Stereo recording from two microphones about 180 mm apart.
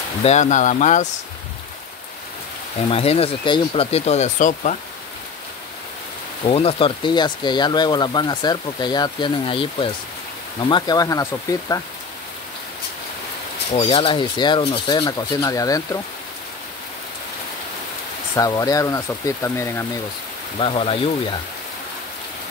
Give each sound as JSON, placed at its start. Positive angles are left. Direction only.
{"t": 0.2, "sound": "speech", "side_deg": 40}
{"t": 2.9, "sound": "speech", "side_deg": 35}
{"t": 6.4, "sound": "speech", "side_deg": 30}
{"t": 13.7, "sound": "speech", "side_deg": 30}
{"t": 18.3, "sound": "speech", "side_deg": 20}
{"t": 20.5, "sound": "speech", "side_deg": 30}